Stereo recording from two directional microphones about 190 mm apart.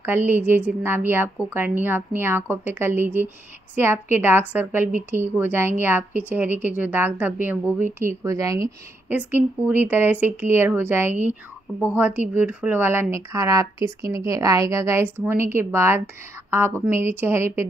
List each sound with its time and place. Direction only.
0.0 s a woman's voice: 10° right (ahead or behind)